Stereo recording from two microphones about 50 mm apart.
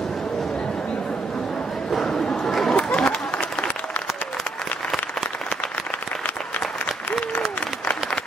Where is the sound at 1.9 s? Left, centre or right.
Centre.